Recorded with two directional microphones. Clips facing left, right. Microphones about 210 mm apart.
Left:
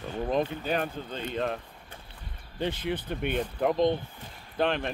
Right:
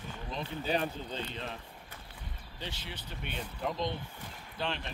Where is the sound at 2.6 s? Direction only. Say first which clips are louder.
Left 13 dB; 55° left (ahead or behind).